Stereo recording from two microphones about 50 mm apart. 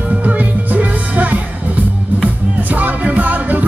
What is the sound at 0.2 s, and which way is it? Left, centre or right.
Music, right.